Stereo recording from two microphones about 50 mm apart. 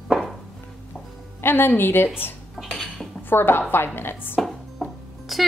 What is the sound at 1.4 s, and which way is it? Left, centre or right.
Speech, left.